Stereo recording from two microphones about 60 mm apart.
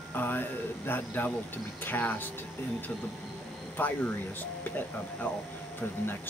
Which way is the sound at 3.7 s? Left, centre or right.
Left.